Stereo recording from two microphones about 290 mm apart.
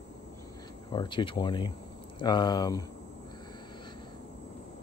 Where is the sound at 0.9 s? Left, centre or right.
Centre.